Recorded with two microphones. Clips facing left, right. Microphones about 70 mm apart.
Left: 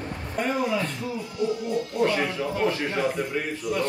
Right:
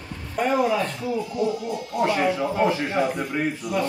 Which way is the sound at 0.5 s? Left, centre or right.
Centre.